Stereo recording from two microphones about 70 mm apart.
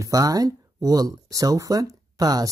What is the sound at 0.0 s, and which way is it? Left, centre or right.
Speech, right.